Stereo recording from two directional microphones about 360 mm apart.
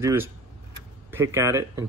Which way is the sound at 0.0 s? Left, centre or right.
Centre.